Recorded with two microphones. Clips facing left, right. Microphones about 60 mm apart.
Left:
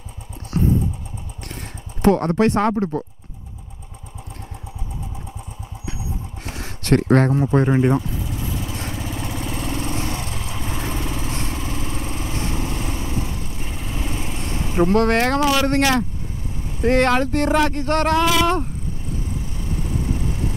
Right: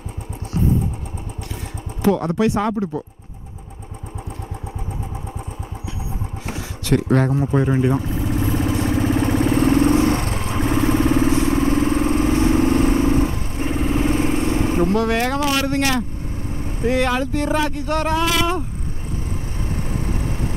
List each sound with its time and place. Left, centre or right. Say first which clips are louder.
0.5 s vehicle: left 1 dB; left
2.0 s speech: left 2 dB; left
6.5 s a sound: left 1 dB; left
7.6 s speech: left 1 dB; left
8.0 s vehicle: right 7 dB; right
15.0 s speech: left 2 dB; left
16.8 s speech: left 3 dB; left
19.7 s vehicle: left 1 dB; right